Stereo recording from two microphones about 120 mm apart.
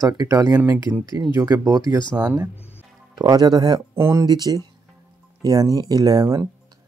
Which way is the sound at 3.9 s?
20° right (ahead or behind).